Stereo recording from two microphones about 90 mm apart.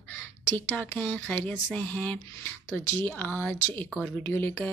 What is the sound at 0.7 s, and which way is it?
Speech, 20° left (ahead or behind).